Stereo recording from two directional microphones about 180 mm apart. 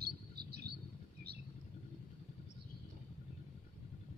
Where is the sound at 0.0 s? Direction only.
60° right (ahead or behind).